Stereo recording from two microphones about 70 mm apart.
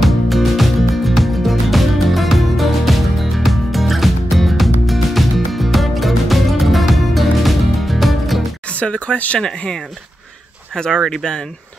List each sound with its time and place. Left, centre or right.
0.0 s music: centre
8.7 s speech: centre